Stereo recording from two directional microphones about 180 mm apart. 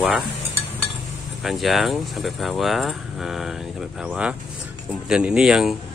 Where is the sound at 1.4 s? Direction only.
Centre (ahead or behind).